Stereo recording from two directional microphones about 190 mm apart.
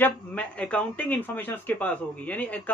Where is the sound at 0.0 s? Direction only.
5° left (ahead or behind).